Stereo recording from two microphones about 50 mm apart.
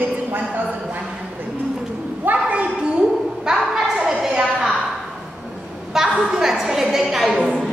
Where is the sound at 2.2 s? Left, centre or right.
Right; by 4.1 s centre.